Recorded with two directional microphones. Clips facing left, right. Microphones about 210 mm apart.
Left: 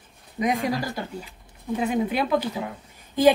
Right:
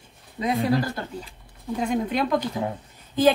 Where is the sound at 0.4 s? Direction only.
15° left (ahead or behind).